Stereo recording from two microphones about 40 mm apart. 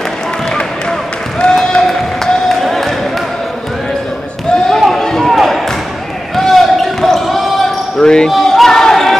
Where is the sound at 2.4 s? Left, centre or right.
Centre.